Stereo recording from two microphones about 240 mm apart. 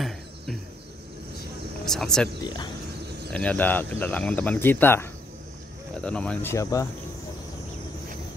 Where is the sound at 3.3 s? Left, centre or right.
Centre.